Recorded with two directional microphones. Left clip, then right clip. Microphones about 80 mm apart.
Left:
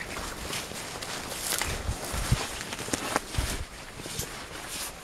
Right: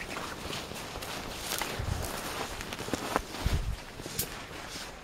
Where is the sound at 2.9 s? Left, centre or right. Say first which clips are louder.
Left 2 dB; left.